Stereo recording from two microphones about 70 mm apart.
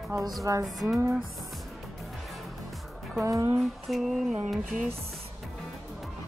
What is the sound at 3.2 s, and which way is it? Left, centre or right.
Speech, right.